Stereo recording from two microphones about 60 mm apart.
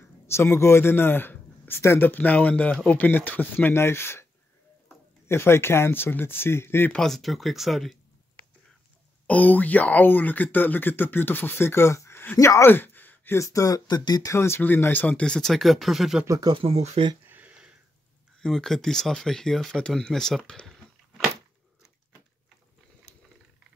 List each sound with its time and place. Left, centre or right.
0.3 s a man's voice: left
1.8 s speech: left
2.0 s speech: left
3.7 s speech: left
5.3 s speech: left
7.0 s speech: centre
9.3 s speech: left
12.6 s a sound: left
13.3 s speech: left
14.3 s speech: left
14.6 s speech: left; by 16.2 s centre
17.3 s a sound: right
18.4 s speech: centre